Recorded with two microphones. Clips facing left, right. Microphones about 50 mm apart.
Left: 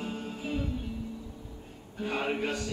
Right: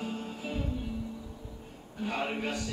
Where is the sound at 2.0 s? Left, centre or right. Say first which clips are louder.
Left 2 dB; centre.